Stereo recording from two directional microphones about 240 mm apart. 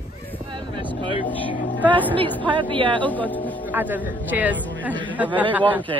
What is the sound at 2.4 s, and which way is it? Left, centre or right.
Speech, right.